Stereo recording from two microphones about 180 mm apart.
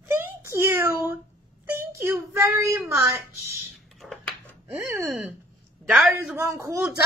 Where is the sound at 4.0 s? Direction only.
Centre (ahead or behind); by 6.8 s 15° right (ahead or behind).